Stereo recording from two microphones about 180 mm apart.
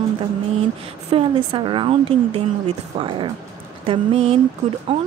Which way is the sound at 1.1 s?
30° right (ahead or behind).